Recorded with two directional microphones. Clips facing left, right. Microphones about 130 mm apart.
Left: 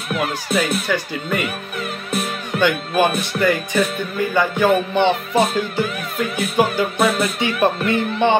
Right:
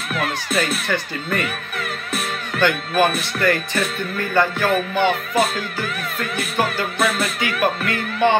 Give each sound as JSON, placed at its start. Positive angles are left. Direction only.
{"t": 0.6, "sound": "music", "side_deg": 10}